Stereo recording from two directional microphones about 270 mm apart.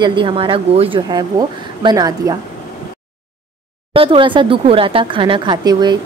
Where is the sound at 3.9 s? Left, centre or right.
Centre.